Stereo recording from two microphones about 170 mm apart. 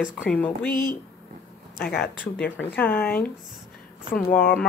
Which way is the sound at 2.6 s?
10° left (ahead or behind).